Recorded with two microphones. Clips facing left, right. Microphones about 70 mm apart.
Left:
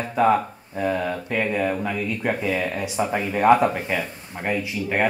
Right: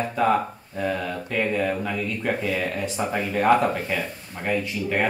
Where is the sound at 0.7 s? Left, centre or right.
Centre.